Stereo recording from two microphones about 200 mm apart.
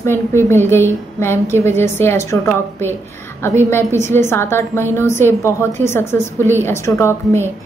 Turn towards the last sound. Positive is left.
turn(degrees=15)  # may be behind; listen again after turning